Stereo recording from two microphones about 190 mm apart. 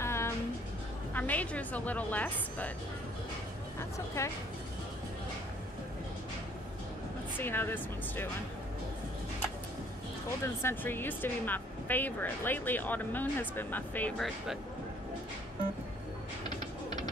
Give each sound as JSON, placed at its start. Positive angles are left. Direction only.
{"t": 0.0, "sound": "music", "side_deg": 15}
{"t": 1.1, "sound": "speech", "side_deg": 10}
{"t": 4.2, "sound": "speech", "side_deg": 15}
{"t": 7.3, "sound": "speech", "side_deg": 10}
{"t": 10.4, "sound": "speech", "side_deg": 10}
{"t": 16.4, "sound": "a sound", "side_deg": 20}